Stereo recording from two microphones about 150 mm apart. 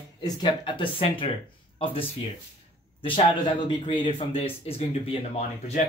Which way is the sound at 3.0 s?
35° left (ahead or behind).